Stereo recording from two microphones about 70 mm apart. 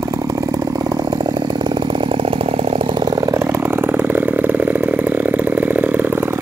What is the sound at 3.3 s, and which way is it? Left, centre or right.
Chainsaw, right.